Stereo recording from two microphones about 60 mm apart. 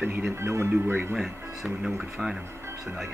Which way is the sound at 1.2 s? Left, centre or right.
Centre.